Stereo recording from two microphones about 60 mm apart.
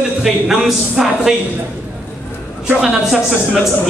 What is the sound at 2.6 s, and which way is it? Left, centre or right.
Speech, centre.